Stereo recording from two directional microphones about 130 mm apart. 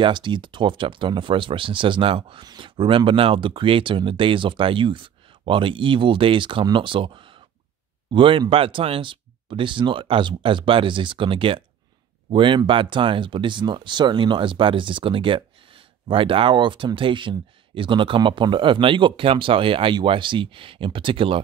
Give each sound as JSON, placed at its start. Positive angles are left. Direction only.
{"t": 0.0, "sound": "speech", "side_deg": -40}